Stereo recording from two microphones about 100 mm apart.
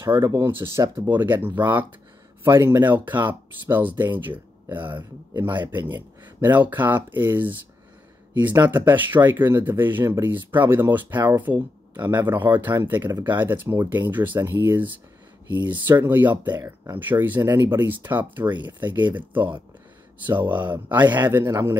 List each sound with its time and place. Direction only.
0.0 s speech: 25° right (ahead or behind)
8.6 s speech: 20° right (ahead or behind)
15.9 s speech: 20° right (ahead or behind)
17.4 s speech: 40° right (ahead or behind)
17.6 s speech: 20° right (ahead or behind)
21.5 s speech: 35° right (ahead or behind)